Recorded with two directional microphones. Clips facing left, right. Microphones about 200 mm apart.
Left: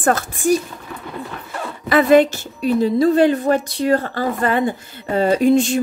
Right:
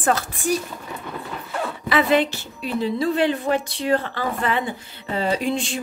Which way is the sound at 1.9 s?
45° left (ahead or behind).